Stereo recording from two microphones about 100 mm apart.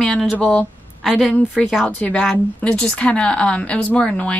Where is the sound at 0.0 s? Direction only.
5° left (ahead or behind).